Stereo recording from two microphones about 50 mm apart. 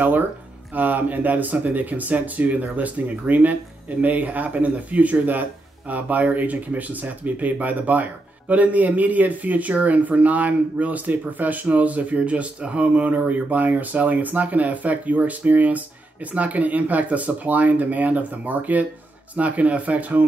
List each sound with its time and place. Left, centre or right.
0.7 s speech: right